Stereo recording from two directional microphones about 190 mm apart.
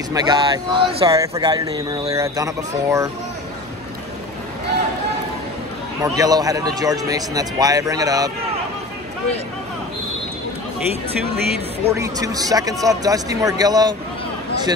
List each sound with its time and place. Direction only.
0.1 s a man's voice: 20° right (ahead or behind)
6.1 s a man's voice: 20° right (ahead or behind)
11.9 s a man's voice: 20° right (ahead or behind)